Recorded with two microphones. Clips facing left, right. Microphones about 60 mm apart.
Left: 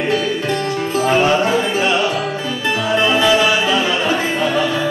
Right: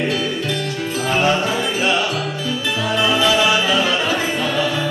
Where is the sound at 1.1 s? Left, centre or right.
Centre.